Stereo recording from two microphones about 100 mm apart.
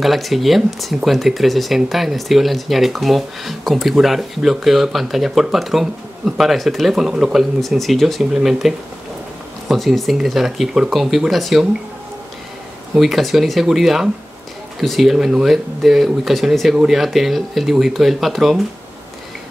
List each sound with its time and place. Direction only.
0.0 s speech: centre (ahead or behind)
12.9 s speech: centre (ahead or behind)